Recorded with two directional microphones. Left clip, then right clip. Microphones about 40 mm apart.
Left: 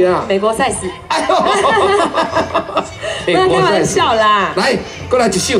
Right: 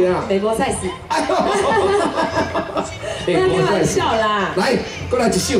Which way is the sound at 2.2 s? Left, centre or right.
Centre.